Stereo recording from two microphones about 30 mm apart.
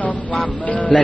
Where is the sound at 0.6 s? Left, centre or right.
Left.